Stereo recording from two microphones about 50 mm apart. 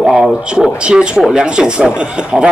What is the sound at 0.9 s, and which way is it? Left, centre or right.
Speech, centre.